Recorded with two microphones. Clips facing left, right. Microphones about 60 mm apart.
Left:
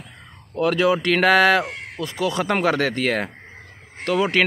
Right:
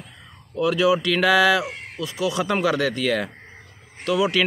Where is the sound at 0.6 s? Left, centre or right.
Left.